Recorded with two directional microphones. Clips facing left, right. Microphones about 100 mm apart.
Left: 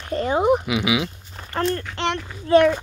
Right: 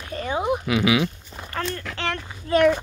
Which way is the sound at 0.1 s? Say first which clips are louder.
Left 6 dB; 35° left (ahead or behind).